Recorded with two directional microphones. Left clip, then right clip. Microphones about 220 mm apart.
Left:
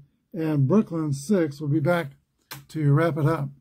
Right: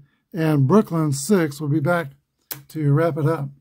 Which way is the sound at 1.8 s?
10° right (ahead or behind).